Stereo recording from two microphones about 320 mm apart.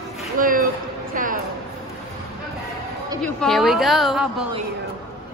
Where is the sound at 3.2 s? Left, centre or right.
Centre.